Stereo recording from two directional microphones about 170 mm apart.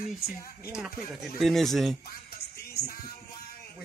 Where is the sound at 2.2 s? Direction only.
65° left (ahead or behind).